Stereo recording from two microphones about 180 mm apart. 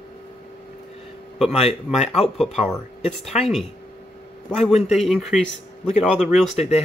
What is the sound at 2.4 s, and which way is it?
Speech, centre (ahead or behind).